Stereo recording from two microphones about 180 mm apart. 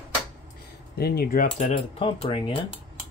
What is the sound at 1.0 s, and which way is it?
Keys jangling, 60° left (ahead or behind).